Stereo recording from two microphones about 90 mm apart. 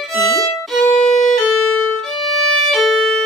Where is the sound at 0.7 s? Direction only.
Centre (ahead or behind).